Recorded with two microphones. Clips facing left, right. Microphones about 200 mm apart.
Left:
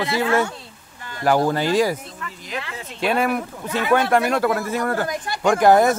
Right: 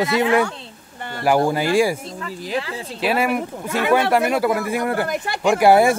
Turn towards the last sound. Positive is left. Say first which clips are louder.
# right 1 dB
turn(degrees=-10)  # may be behind; listen again after turning